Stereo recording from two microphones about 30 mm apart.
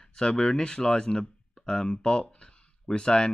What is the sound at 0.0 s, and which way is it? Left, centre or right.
Speech, left.